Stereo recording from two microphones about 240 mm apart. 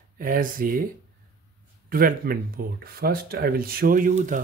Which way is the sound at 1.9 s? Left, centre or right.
Right.